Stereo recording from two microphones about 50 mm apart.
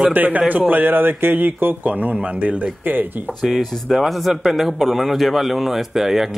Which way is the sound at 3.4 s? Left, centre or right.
Centre.